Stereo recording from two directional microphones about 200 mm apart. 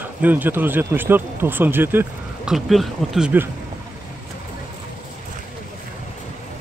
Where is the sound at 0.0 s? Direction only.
10° right (ahead or behind).